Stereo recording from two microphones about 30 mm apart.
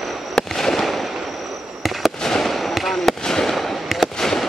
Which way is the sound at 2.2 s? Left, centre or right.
Centre.